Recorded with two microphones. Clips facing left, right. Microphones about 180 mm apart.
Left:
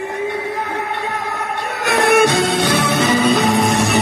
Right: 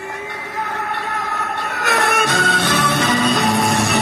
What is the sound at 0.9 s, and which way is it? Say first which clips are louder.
Music: left 2 dB; 15° left (ahead or behind).